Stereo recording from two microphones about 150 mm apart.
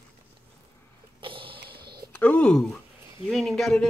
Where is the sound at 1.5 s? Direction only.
90° right.